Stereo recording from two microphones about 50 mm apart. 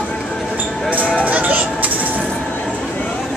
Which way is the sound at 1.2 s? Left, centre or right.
Right.